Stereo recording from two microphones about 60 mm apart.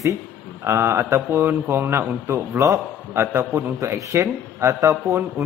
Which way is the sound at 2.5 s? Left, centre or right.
Right.